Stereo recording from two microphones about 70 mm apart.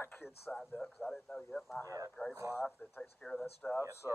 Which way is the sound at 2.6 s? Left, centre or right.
Centre.